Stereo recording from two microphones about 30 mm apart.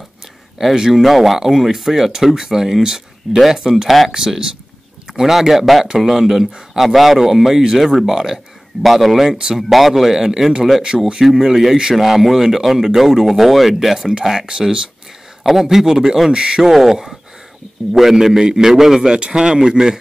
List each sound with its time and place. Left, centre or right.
0.7 s speech: centre
5.2 s speech: centre
10.9 s speech: centre
11.2 s speech: centre
14.2 s speech: centre
15.4 s speech: centre; by 16.6 s right
16.6 s speech: centre
18.1 s speech: centre
19.1 s speech: right